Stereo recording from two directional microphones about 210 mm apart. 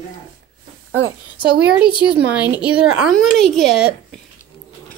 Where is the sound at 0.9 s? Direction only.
55° right (ahead or behind).